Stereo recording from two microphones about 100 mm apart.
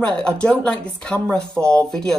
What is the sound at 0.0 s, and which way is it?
Speech, 10° left (ahead or behind).